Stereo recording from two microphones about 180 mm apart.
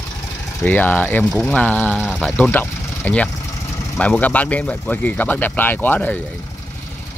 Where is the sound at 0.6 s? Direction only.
10° left (ahead or behind).